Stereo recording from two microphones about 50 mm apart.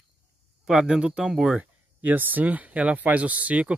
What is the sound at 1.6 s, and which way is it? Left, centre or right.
Speech, right.